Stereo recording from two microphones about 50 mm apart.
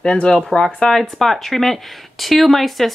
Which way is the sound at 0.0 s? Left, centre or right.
Centre.